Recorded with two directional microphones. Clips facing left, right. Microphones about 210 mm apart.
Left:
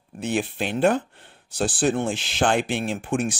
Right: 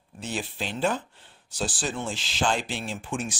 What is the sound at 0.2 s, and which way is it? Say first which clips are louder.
Speech: left 7 dB; 60° left (ahead or behind).